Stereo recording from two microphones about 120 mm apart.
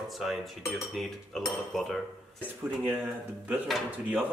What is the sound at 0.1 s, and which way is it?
Cutlery, centre (ahead or behind).